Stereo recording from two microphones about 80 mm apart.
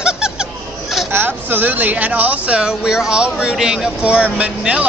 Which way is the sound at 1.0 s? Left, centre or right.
Right.